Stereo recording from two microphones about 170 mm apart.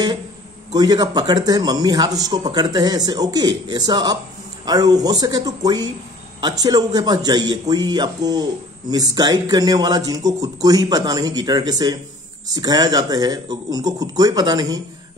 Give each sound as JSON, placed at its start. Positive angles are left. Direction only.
{"t": 0.7, "sound": "speech", "side_deg": -25}